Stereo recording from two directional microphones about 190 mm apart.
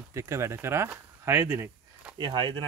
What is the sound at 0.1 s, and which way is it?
Speech, 15° right (ahead or behind).